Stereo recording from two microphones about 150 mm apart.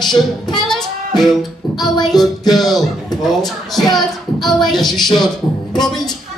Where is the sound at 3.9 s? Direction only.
Centre (ahead or behind).